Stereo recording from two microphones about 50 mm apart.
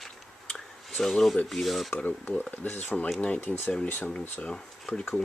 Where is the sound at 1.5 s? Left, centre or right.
Centre.